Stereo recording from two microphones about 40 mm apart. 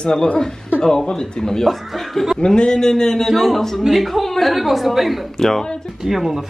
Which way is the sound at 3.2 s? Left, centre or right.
Centre.